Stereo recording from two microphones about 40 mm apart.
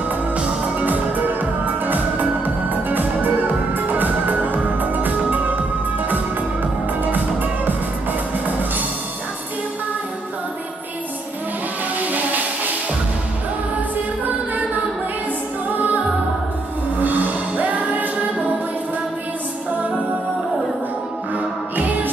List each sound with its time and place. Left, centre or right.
0.7 s music: right
17.0 s music: right
21.4 s music: right